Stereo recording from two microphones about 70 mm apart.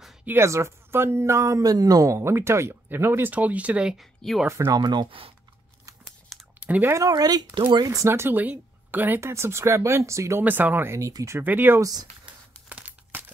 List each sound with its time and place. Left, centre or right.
0.4 s speech: right
2.1 s speech: right; by 4.0 s centre
4.0 s speech: centre
4.7 s speech: right
6.6 s speech: right
7.0 s speech: right
7.8 s speech: right
8.1 s speech: right
9.2 s speech: right
10.4 s speech: right
10.9 s speech: right
11.3 s speech: right
11.8 s speech: right
12.3 s crumpling: centre